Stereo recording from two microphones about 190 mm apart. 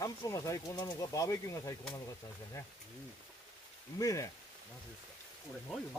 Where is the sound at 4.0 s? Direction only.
20° left (ahead or behind).